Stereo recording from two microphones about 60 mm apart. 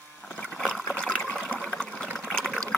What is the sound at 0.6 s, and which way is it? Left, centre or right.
Water, centre.